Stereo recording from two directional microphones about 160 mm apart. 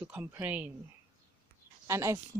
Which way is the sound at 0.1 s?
10° right (ahead or behind).